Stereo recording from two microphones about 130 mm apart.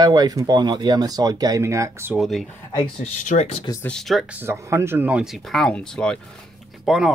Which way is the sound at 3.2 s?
70° left (ahead or behind).